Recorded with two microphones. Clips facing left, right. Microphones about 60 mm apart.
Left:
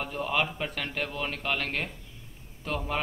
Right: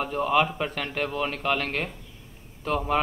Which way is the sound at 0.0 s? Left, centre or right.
Centre.